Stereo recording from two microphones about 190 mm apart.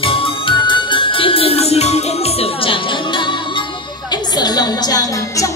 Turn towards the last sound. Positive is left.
turn(degrees=20)  # may be behind; listen again after turning